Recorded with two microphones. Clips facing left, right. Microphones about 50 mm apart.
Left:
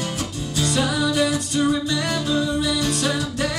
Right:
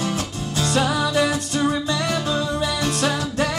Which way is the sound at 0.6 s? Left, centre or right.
Right.